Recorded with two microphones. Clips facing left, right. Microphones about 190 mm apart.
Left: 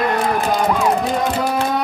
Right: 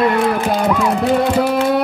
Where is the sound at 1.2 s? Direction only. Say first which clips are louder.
Right 4 dB; 65° right (ahead or behind).